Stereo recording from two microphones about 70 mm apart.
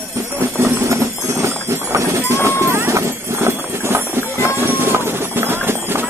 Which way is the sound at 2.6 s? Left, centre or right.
Right.